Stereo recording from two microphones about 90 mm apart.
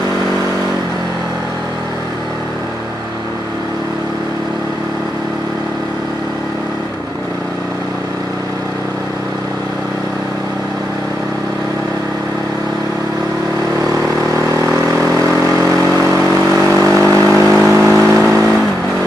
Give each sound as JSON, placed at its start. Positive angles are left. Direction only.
{"t": 15.0, "sound": "vehicle", "side_deg": -35}